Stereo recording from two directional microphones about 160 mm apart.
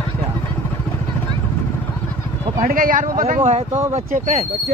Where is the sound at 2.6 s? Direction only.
60° right (ahead or behind).